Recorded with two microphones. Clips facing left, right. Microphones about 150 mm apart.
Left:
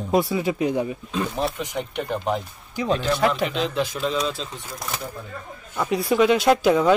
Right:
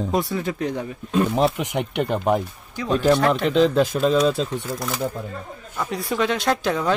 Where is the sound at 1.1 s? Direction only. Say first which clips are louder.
Right 6 dB; 65° right (ahead or behind).